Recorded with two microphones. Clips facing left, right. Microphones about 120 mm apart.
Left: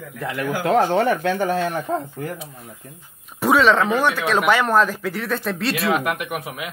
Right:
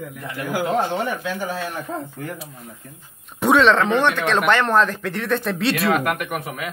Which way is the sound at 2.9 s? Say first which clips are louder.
Even; 5° left (ahead or behind).